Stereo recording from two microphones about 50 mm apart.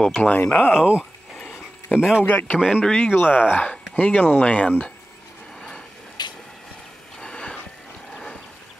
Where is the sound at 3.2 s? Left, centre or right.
Left.